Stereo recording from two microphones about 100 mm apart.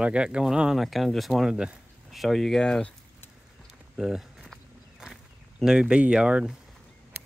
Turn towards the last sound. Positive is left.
turn(degrees=-5)  # may be behind; listen again after turning